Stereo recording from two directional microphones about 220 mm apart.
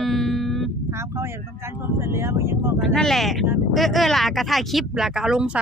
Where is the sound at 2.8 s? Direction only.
Centre (ahead or behind).